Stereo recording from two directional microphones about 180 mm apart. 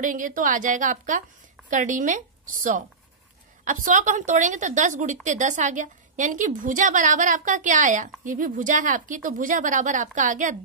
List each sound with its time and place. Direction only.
0.0 s speech: 50° right (ahead or behind)